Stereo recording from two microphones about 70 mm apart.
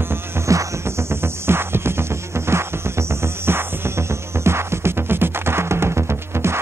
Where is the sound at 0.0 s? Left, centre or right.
Right.